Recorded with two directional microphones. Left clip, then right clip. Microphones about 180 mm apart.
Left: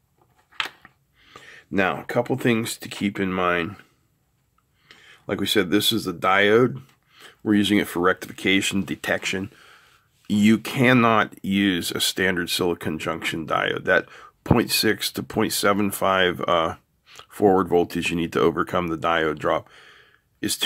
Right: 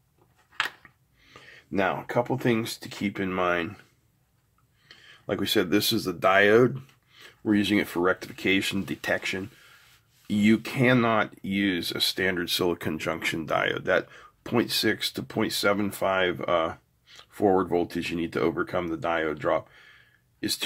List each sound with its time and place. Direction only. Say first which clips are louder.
0.8 s speech: left 4 dB; 25° left (ahead or behind)
4.8 s speech: left 2 dB; 20° left (ahead or behind)